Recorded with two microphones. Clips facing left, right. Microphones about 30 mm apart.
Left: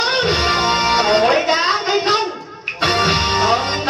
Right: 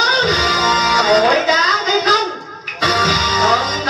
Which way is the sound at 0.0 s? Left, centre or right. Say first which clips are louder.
Right 3 dB; centre.